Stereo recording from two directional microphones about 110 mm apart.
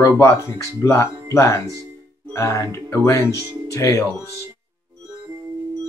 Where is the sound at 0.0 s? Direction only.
25° left (ahead or behind).